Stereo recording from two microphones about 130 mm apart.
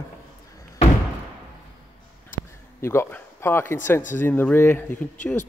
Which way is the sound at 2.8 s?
20° left (ahead or behind).